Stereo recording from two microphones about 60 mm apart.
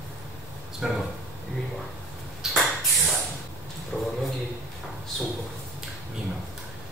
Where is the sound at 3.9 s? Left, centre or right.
Centre.